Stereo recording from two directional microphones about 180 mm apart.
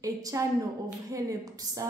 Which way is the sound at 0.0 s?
20° right (ahead or behind).